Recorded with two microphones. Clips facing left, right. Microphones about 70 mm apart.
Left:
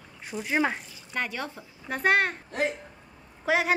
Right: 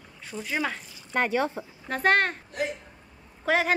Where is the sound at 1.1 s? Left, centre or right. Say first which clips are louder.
Right 7 dB; right.